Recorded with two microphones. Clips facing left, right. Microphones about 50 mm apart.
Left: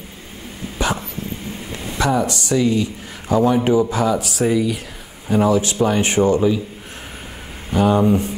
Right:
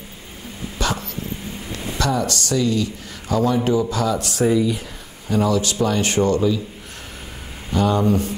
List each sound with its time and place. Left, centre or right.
0.7 s a sound: centre
1.7 s speech: centre
4.2 s speech: centre
5.3 s speech: left
7.7 s speech: centre